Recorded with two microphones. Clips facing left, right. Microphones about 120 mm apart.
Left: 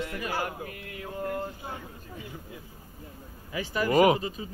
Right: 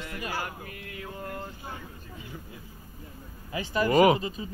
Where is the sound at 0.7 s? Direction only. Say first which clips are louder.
Left 1 dB; 45° left (ahead or behind).